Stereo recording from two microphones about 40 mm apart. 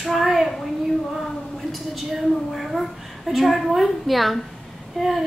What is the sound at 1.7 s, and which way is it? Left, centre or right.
A woman's voice, centre.